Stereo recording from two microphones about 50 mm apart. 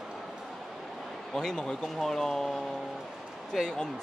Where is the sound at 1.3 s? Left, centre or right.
Centre.